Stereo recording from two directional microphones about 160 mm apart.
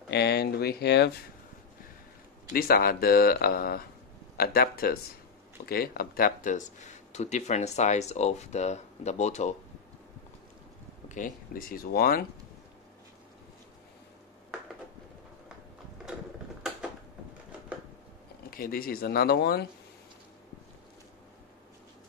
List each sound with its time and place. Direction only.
0.1 s speech: 90° left
2.5 s speech: 65° left (ahead or behind); by 9.6 s 45° left (ahead or behind)
11.1 s speech: 55° left (ahead or behind)
18.5 s speech: 65° left (ahead or behind); by 19.6 s 90° left